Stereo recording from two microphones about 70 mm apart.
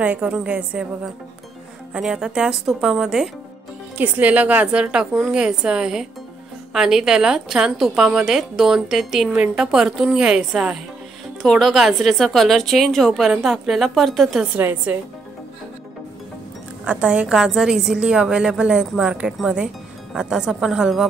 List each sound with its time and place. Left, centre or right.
0.0 s a woman's voice: centre
2.0 s a woman's voice: centre
4.0 s a woman's voice: right; by 14.4 s centre
14.6 s a woman's voice: right
16.8 s a woman's voice: centre